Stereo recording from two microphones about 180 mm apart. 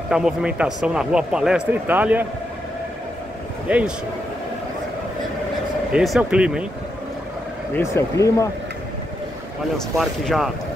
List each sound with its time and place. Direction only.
0.1 s a man's voice: 5° right (ahead or behind)
3.6 s speech: 5° right (ahead or behind)
5.9 s a man's voice: 5° right (ahead or behind)
7.7 s speech: 15° left (ahead or behind)
9.8 s a man's voice: centre (ahead or behind)